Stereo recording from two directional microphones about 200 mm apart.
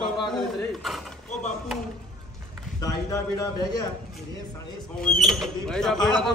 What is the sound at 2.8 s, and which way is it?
A man's voice, 15° left (ahead or behind).